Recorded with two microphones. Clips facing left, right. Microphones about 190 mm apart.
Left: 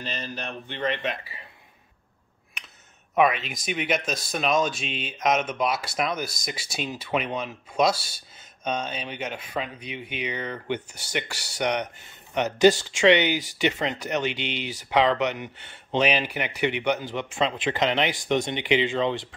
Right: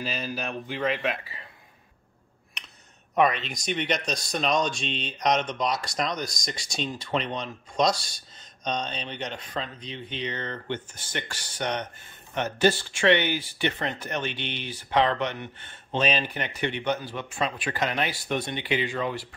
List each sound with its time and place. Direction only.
0.0 s speech: 5° right (ahead or behind)
3.2 s speech: 5° left (ahead or behind); by 19.2 s 25° left (ahead or behind)